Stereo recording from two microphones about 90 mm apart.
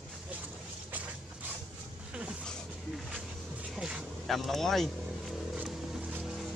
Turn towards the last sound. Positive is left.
turn(degrees=-5)  # may be behind; listen again after turning